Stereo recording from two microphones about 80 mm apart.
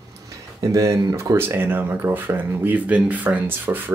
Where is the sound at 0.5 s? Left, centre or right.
Right.